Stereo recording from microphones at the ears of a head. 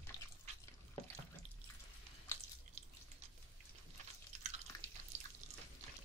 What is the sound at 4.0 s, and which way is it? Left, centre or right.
Drip, right.